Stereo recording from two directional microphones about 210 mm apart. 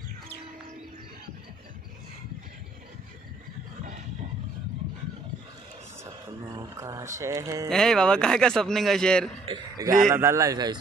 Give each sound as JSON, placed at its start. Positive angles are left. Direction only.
{"t": 6.4, "sound": "speech", "side_deg": -15}
{"t": 7.7, "sound": "speech", "side_deg": 0}
{"t": 9.5, "sound": "speech", "side_deg": -15}